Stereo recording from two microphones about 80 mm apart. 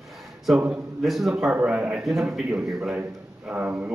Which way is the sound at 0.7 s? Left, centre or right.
Centre.